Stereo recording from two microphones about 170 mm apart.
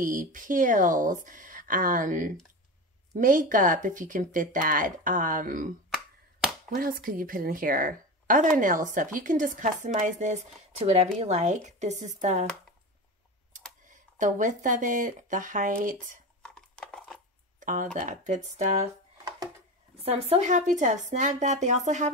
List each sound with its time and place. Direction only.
0.0 s a woman's voice: 50° right (ahead or behind)
6.7 s a woman's voice: 55° right (ahead or behind)
13.8 s speech: 50° right (ahead or behind)
16.4 s a sound: 5° left (ahead or behind)
17.6 s computer keyboard: 50° right (ahead or behind)
17.9 s a woman's voice: 50° right (ahead or behind)
20.0 s a woman's voice: 35° right (ahead or behind)